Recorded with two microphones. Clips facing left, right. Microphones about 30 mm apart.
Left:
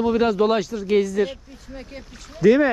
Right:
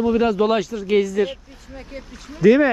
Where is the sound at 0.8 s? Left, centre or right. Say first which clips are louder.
Right 1 dB; right.